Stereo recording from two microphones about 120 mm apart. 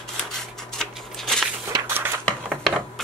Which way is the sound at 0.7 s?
5° left (ahead or behind).